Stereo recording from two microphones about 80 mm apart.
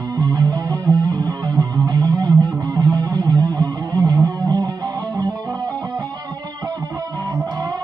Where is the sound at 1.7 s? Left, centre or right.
Right.